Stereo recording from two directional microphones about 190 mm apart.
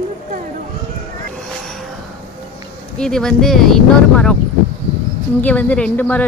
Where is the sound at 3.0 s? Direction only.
5° left (ahead or behind).